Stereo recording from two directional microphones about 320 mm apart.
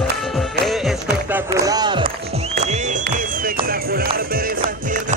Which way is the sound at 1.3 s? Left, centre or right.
Centre.